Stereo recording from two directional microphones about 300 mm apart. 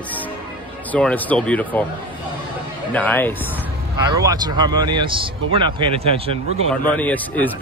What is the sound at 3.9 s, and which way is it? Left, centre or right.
Speech, centre.